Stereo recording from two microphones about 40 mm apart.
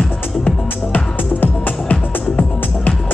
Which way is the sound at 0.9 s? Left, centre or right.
Left.